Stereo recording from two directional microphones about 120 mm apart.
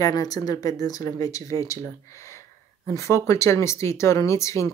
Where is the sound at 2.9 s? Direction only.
25° left (ahead or behind).